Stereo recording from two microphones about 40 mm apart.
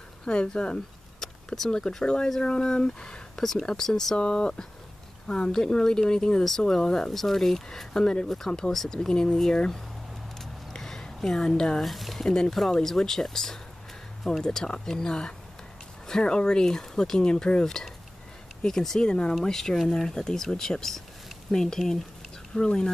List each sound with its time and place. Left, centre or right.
0.2 s speech: left
1.2 s speech: centre
4.2 s speech: left
7.1 s speech: centre
10.4 s a sound: centre
11.1 s speech: centre
11.8 s speech: centre
12.3 s speech: centre
22.5 s speech: centre